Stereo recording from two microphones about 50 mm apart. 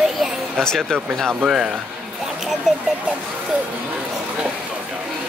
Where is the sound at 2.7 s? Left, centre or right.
Centre.